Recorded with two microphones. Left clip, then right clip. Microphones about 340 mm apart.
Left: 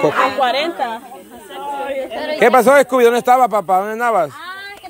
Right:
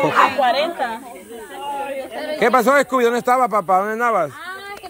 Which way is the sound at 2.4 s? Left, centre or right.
Centre.